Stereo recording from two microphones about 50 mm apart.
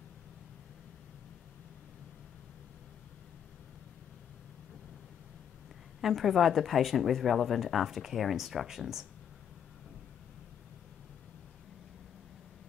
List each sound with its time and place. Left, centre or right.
5.9 s speech: centre